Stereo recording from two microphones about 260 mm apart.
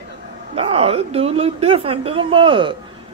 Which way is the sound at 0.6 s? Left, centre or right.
Right.